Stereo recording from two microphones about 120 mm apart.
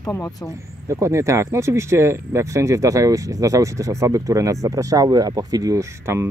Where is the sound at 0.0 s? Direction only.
30° left (ahead or behind).